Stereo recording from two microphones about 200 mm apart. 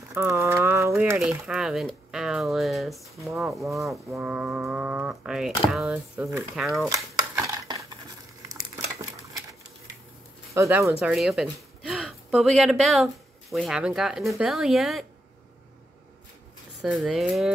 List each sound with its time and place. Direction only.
0.1 s a sound: 15° right (ahead or behind)
1.0 s speech: 5° right (ahead or behind)
6.9 s dishes: 15° right (ahead or behind)
8.5 s a sound: 15° right (ahead or behind)
10.5 s speech: 15° right (ahead or behind)
16.8 s speech: centre (ahead or behind)